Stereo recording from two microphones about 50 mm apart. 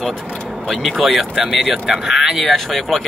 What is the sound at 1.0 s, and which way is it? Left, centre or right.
Speech, centre.